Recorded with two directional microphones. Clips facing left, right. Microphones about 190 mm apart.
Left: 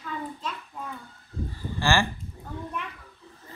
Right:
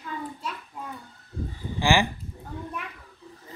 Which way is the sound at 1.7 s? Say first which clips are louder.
Right 2 dB; 15° right (ahead or behind).